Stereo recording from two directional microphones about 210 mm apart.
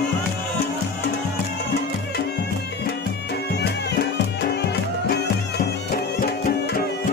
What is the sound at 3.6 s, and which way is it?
Music, 50° left (ahead or behind).